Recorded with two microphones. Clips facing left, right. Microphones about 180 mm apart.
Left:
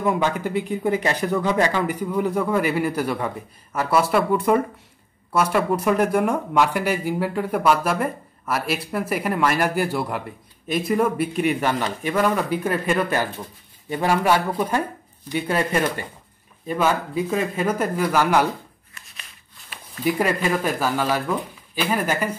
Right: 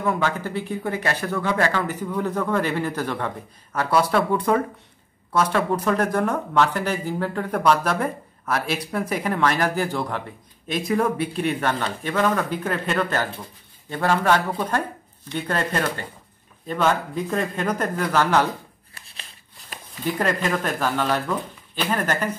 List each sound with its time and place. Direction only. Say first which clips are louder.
0.0 s speech: left 2 dB; 15° left (ahead or behind)
18.9 s shuffling cards: right 2 dB; 30° right (ahead or behind)
20.1 s speech: left 2 dB; 10° left (ahead or behind)